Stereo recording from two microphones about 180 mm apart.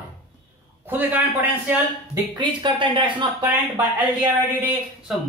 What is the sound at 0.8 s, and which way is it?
A man's voice, 10° right (ahead or behind).